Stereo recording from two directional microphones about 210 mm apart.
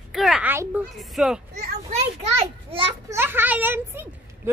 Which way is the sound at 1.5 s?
50° right (ahead or behind).